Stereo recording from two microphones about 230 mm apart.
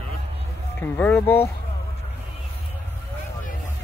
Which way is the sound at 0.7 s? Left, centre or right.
Centre.